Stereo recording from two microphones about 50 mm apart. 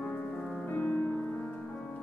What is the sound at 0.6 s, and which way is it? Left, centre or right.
Music, left.